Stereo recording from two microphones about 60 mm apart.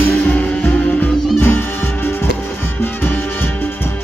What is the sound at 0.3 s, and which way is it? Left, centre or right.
Music, left.